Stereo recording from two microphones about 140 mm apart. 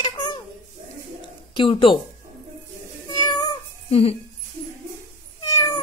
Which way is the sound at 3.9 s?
45° left (ahead or behind).